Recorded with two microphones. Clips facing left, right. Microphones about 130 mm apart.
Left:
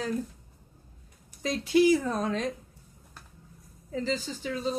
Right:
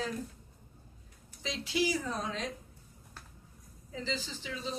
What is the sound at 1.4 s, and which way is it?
Speech, 50° left (ahead or behind).